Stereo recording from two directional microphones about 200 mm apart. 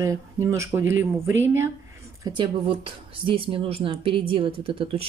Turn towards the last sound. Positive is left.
turn(degrees=-25)  # may be behind; listen again after turning